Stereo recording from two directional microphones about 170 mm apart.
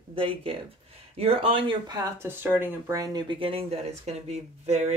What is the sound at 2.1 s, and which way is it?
Speech, 10° right (ahead or behind).